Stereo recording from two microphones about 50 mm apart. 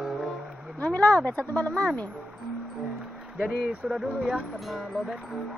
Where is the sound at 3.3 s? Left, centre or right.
Centre.